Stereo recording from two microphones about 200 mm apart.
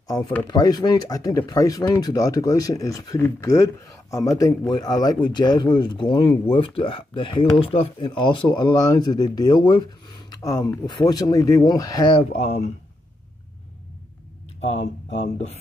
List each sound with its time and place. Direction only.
0.5 s speech: 20° left (ahead or behind)
14.6 s speech: 30° left (ahead or behind)